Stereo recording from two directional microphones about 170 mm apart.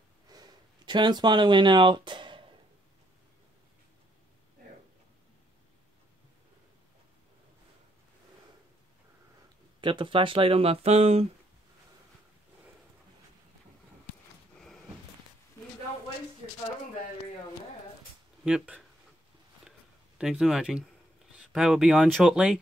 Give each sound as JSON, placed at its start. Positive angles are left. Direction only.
{"t": 0.3, "sound": "a sound", "side_deg": -25}
{"t": 9.8, "sound": "speech", "side_deg": -30}
{"t": 18.4, "sound": "speech", "side_deg": -5}
{"t": 20.2, "sound": "speech", "side_deg": -5}